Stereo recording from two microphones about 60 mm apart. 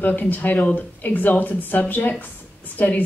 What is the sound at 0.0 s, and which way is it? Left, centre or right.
A woman's voice, left.